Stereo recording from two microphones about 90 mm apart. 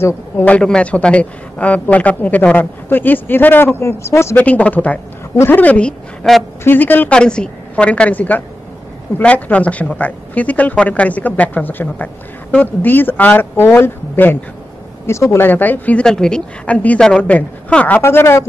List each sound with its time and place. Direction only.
0.5 s speech: 10° left (ahead or behind); by 4.4 s 30° left (ahead or behind)
4.4 s a woman's voice: 15° left (ahead or behind)
7.2 s speech: 10° left (ahead or behind); by 18.4 s 25° left (ahead or behind)